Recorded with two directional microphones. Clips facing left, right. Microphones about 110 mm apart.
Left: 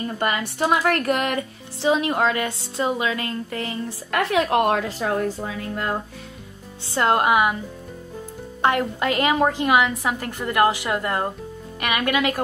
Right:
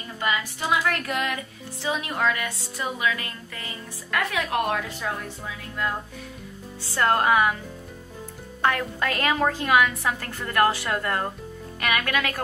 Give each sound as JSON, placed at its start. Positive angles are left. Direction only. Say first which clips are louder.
{"t": 0.2, "sound": "speech", "louder": "left 3 dB", "side_deg": 55}
{"t": 1.8, "sound": "a woman's voice", "louder": "left 7 dB", "side_deg": 30}
{"t": 5.0, "sound": "speech", "louder": "left 8 dB", "side_deg": 45}
{"t": 6.9, "sound": "a woman's voice", "louder": "left 2 dB", "side_deg": 20}
{"t": 8.6, "sound": "a woman's voice", "louder": "left 4 dB", "side_deg": 20}